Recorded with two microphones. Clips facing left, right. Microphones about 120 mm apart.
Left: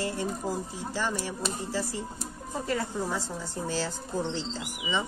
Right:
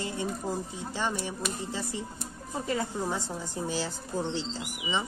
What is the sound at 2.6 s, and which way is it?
A woman's voice, 20° right (ahead or behind).